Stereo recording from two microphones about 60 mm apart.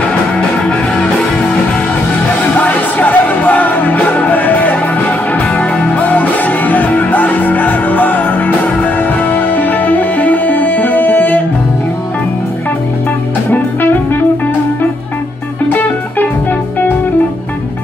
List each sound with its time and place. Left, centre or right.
0.7 s music: centre
2.5 s music: left
15.7 s music: left